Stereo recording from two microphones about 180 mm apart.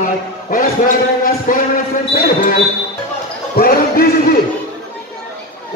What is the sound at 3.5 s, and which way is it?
Speech, 55° left (ahead or behind).